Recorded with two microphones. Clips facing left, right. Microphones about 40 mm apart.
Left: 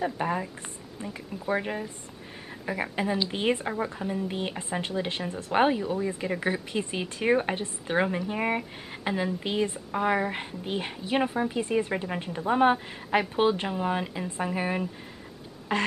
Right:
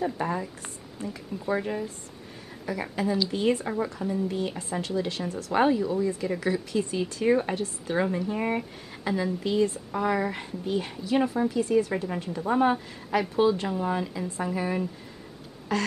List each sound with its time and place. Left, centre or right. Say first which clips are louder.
0.0 s a woman's voice: even; left
13.4 s a woman's voice: right 1 dB; left